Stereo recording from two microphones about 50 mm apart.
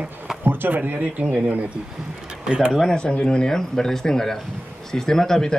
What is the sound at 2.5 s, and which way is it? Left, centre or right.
Speech, centre.